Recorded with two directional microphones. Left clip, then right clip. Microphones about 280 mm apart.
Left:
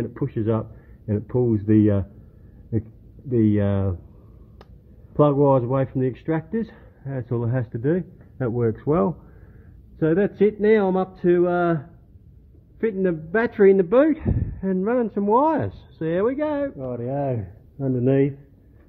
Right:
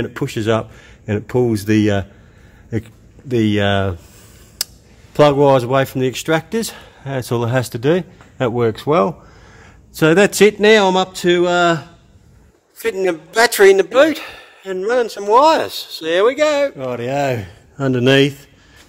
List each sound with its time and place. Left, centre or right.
0.0 s speech: right
3.3 s speech: centre
5.1 s speech: centre
9.9 s speech: right
10.7 s speech: centre
13.0 s speech: right
17.7 s speech: right